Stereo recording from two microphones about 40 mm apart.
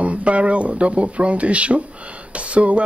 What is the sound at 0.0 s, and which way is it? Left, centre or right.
Speech, right.